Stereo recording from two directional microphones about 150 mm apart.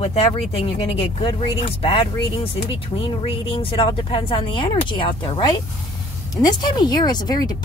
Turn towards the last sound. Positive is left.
turn(degrees=25)  # may be behind; listen again after turning